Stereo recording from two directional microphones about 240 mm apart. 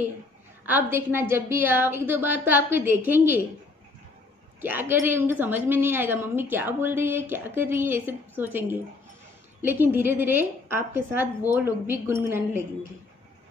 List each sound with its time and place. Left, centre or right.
0.7 s a woman's voice: centre
4.6 s a woman's voice: centre